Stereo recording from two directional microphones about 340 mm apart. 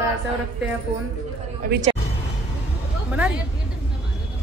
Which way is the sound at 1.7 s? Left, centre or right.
Right.